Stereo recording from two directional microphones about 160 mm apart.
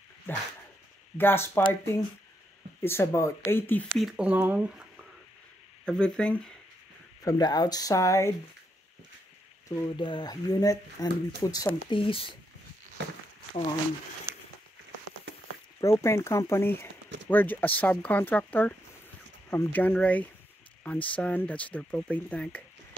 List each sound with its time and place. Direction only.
1.1 s speech: 15° left (ahead or behind)
4.0 s speech: 10° right (ahead or behind)
5.9 s speech: 5° left (ahead or behind)
7.2 s speech: 25° left (ahead or behind)
9.8 s speech: 25° left (ahead or behind)
11.9 s speech: 35° left (ahead or behind)
13.0 s speech: 90° right
15.8 s speech: 20° left (ahead or behind)